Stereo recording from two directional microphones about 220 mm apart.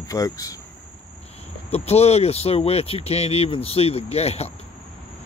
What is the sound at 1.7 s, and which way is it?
Speech, 30° left (ahead or behind).